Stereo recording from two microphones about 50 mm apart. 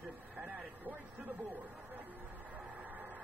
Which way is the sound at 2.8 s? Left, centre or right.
Right.